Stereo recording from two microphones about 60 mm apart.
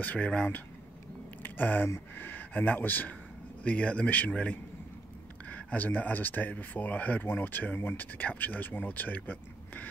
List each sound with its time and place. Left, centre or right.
0.0 s speech: left